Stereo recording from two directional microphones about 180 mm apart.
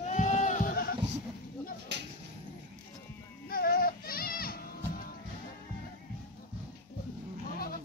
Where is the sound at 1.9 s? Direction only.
75° right (ahead or behind).